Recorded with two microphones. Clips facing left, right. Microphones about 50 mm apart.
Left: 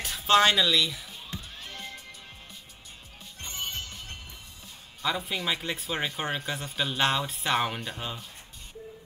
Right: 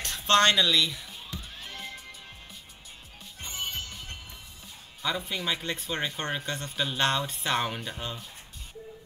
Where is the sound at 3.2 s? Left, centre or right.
Centre.